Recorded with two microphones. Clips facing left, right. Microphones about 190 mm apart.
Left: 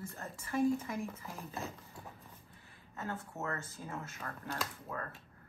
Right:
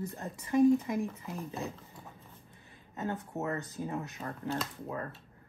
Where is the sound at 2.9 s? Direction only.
20° right (ahead or behind).